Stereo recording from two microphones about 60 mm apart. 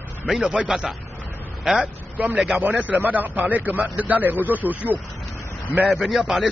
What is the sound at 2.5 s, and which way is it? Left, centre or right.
A man's voice, right.